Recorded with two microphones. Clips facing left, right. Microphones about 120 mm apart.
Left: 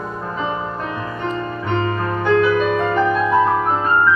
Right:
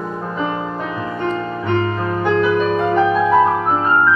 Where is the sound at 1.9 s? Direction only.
15° right (ahead or behind).